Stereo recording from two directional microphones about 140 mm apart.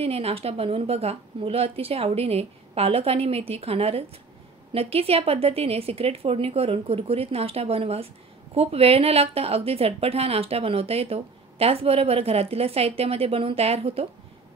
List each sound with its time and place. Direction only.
0.0 s a woman's voice: 45° right (ahead or behind)